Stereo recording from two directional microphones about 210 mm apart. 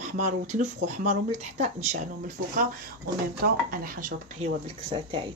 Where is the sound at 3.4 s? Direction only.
45° right (ahead or behind).